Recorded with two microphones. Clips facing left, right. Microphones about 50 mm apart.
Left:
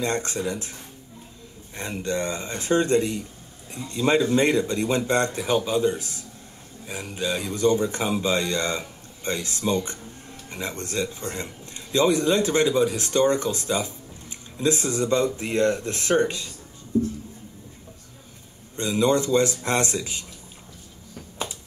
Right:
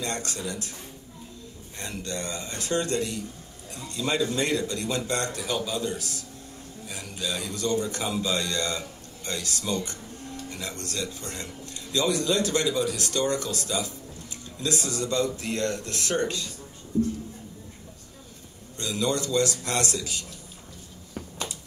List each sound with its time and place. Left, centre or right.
0.0 s speech: left
1.8 s speech: left
18.8 s speech: left